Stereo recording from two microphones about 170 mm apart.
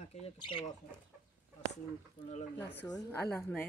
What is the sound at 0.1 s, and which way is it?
Speech, 35° left (ahead or behind).